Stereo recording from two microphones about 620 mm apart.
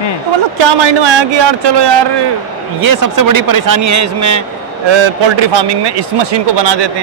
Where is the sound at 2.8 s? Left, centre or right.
Right.